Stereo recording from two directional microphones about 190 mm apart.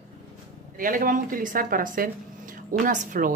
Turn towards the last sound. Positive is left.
turn(degrees=-45)  # may be behind; listen again after turning